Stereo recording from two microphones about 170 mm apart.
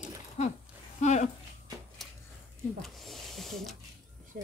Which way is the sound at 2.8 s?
Centre (ahead or behind).